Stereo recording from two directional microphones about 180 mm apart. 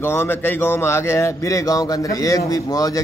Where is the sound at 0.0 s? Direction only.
10° left (ahead or behind).